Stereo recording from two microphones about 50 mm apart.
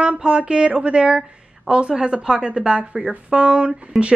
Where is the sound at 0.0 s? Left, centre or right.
Right.